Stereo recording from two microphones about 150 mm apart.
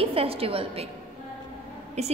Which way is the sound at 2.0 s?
45° right (ahead or behind).